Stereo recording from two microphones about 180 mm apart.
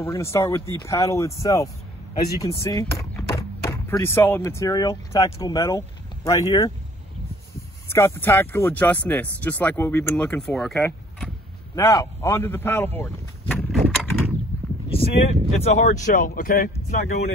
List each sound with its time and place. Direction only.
0.0 s speech: 15° left (ahead or behind)
7.9 s speech: 15° left (ahead or behind)
11.7 s speech: 15° left (ahead or behind)
13.7 s a sound: centre (ahead or behind)
14.9 s speech: 30° left (ahead or behind); by 17.2 s 55° left (ahead or behind)